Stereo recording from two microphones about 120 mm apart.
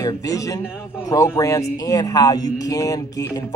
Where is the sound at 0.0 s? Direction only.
30° left (ahead or behind).